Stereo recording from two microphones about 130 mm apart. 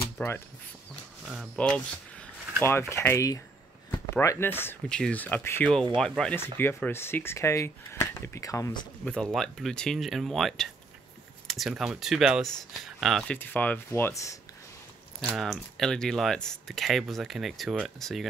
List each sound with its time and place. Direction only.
0.2 s speech: 15° left (ahead or behind)
1.2 s speech: 10° right (ahead or behind)
1.6 s speech: 10° left (ahead or behind)
2.6 s speech: 20° left (ahead or behind)
4.8 s speech: 5° left (ahead or behind)
5.9 s speech: 5° left (ahead or behind)
6.3 s speech: 15° left (ahead or behind)
9.0 s speech: 5° left (ahead or behind)
11.4 s computer keyboard: centre (ahead or behind)
11.7 s speech: 5° right (ahead or behind)
13.4 s speech: 10° left (ahead or behind)
15.2 s speech: centre (ahead or behind)